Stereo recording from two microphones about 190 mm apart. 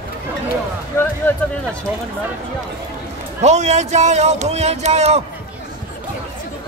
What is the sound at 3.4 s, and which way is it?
Speech, 35° right (ahead or behind).